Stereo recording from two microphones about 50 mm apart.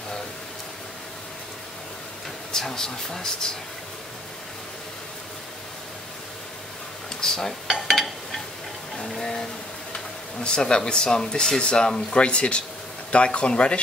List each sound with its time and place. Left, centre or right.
2.5 s speech: centre
7.2 s speech: centre
7.6 s speech: centre
9.1 s a sound: centre
10.4 s speech: centre